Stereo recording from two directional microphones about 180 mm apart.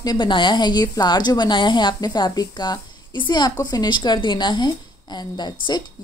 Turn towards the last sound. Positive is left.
turn(degrees=25)  # may be behind; listen again after turning